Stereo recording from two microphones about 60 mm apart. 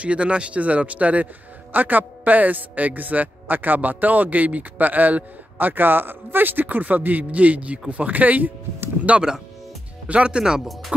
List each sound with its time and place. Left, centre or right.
0.0 s a man's voice: centre
9.0 s speech: centre
10.9 s music: centre